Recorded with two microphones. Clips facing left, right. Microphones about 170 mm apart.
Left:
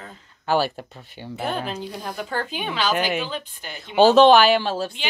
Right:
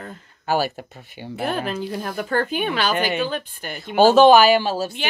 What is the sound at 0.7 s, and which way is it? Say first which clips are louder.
Speech: right 1 dB; 10° right (ahead or behind).